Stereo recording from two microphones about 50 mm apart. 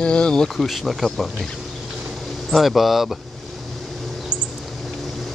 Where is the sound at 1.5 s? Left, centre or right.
Centre.